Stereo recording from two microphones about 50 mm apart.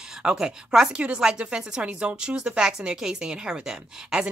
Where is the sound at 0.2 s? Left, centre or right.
Centre.